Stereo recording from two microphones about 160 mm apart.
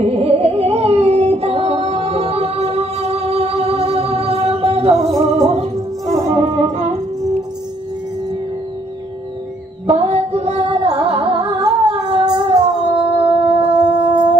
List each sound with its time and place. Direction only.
0.0 s music: 40° right (ahead or behind)
9.8 s music: 35° right (ahead or behind)